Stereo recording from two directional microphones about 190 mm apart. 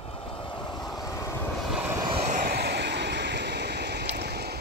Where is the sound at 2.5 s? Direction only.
60° right (ahead or behind).